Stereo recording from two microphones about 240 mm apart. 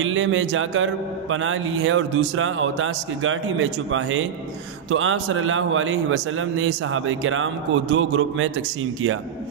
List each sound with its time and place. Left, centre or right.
0.0 s a man's voice: right